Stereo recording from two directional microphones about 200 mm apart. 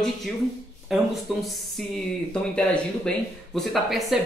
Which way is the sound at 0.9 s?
Centre (ahead or behind).